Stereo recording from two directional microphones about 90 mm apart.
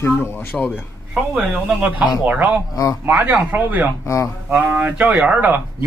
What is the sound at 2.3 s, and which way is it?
Speech, 15° right (ahead or behind).